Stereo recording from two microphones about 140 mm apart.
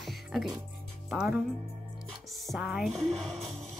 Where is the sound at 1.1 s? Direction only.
5° right (ahead or behind).